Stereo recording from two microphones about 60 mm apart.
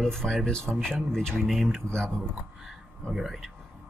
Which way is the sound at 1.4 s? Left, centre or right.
Centre.